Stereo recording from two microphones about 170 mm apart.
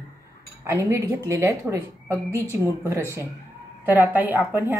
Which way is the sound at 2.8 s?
15° right (ahead or behind).